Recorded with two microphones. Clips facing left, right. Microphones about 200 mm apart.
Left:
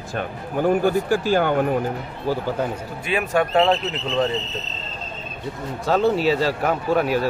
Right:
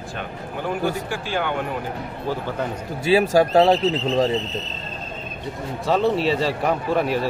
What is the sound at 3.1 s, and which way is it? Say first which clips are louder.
Speech: right 4 dB; 35° right (ahead or behind).